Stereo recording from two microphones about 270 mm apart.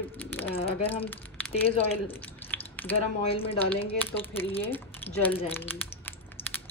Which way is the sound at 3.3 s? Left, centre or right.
Left.